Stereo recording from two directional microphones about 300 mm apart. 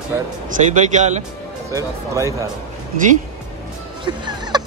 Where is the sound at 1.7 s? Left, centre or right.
Centre.